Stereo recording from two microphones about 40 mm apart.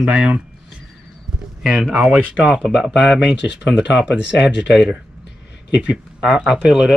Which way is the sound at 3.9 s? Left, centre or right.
Right.